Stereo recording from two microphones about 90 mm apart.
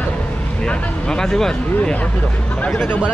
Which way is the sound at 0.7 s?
5° left (ahead or behind).